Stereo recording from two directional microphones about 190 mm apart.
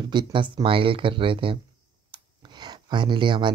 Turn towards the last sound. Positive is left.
turn(degrees=-25)  # may be behind; listen again after turning